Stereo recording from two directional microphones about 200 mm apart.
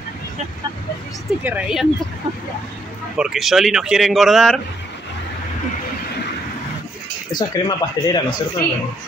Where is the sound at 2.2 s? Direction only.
25° right (ahead or behind).